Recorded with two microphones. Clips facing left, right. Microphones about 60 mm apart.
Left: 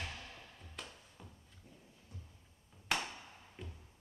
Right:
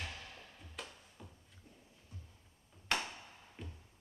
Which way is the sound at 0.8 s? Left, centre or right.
Centre.